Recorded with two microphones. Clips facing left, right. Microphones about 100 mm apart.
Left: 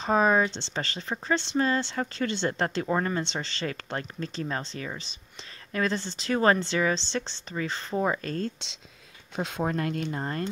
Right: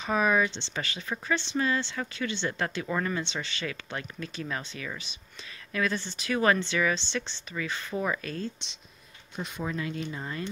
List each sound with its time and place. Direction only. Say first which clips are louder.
0.0 s speech: left 3 dB; 30° left (ahead or behind)
8.2 s speech: left 4 dB; 40° left (ahead or behind)
9.6 s speech: left 4 dB; 50° left (ahead or behind)